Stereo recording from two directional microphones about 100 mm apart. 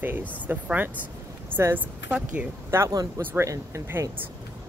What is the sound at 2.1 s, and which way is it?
Speech, 10° right (ahead or behind).